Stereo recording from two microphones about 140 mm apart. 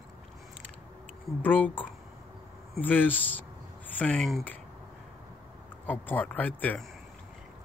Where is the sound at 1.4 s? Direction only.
15° left (ahead or behind).